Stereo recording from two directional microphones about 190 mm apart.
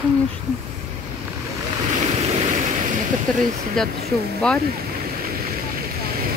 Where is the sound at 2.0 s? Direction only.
35° right (ahead or behind).